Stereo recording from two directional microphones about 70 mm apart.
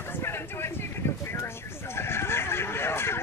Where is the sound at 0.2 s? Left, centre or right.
Left.